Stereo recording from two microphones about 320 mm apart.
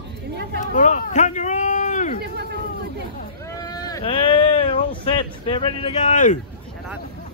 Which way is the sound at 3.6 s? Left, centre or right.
Centre.